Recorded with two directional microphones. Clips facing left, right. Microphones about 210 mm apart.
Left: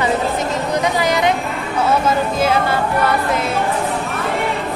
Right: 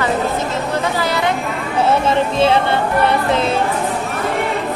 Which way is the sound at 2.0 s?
25° right (ahead or behind).